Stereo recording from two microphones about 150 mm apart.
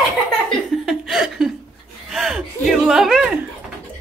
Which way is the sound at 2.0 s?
Centre (ahead or behind).